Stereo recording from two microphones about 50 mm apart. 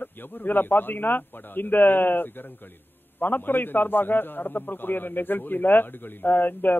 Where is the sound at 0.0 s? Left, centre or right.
Left.